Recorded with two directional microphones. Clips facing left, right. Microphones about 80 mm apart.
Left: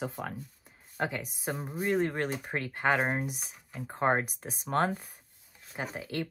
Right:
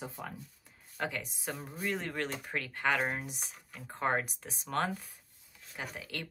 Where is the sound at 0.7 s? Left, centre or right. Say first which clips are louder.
Left 4 dB; left.